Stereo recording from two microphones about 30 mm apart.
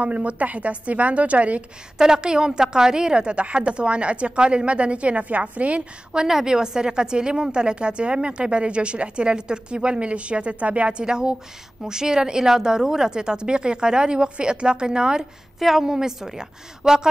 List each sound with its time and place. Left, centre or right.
0.0 s a woman's voice: right
2.0 s a woman's voice: right
6.2 s a woman's voice: centre; by 10.9 s right
10.9 s a woman's voice: right